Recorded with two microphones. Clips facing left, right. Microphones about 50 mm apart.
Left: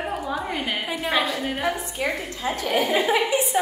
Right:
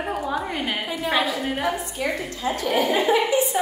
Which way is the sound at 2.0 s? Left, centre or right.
Left.